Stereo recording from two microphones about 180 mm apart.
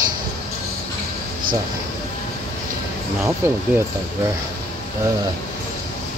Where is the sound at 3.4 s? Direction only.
15° right (ahead or behind).